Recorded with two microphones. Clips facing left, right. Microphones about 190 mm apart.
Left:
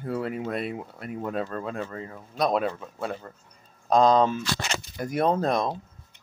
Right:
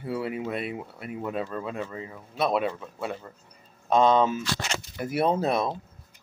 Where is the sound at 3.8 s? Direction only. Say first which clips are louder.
Left 1 dB; 40° left (ahead or behind).